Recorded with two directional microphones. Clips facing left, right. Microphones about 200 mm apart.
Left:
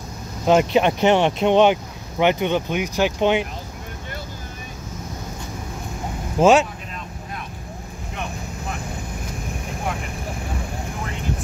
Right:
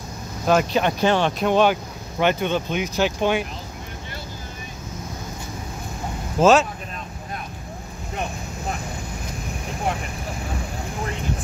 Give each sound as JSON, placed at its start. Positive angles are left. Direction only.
{"t": 0.5, "sound": "speech", "side_deg": 25}
{"t": 6.4, "sound": "speech", "side_deg": 15}